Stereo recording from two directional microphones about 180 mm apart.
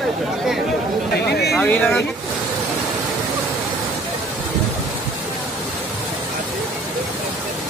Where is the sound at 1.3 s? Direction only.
65° left (ahead or behind).